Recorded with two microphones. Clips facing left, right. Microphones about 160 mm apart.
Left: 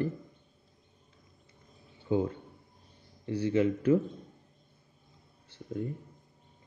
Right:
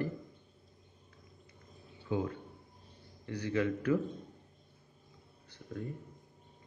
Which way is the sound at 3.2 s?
25° left (ahead or behind).